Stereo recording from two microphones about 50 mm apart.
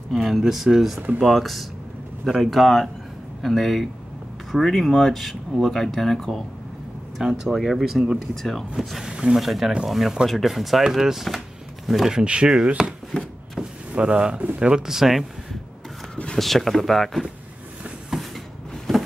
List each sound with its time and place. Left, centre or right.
0.1 s speech: centre
7.2 s speech: centre
8.7 s speech: centre
9.4 s speech: centre
11.2 s a sound: centre
12.3 s speech: centre
13.6 s a sound: right
14.6 s speech: centre
16.3 s speech: centre